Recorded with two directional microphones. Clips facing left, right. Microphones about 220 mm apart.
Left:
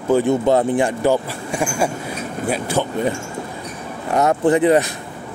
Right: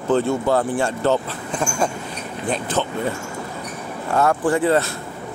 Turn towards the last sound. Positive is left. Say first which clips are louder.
# left 4 dB
turn(degrees=20)  # may be behind; listen again after turning